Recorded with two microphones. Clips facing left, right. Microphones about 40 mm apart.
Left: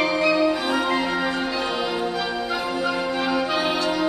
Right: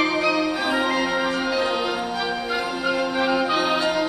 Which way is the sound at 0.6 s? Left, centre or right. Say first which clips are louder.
Right 1 dB; centre.